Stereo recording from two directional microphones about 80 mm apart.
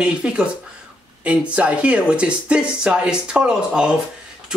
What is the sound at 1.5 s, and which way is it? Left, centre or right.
Speech, centre.